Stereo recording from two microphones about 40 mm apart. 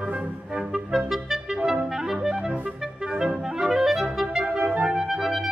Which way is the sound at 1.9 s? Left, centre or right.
Centre.